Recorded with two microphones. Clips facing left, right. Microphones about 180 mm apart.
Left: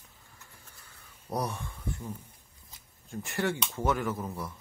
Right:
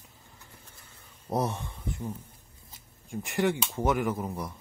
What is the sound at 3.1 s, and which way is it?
Speech, 15° right (ahead or behind).